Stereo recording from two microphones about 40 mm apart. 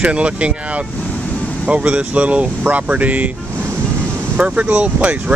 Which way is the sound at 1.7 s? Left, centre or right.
Right.